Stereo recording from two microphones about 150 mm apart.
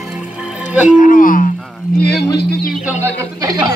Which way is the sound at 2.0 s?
90° left.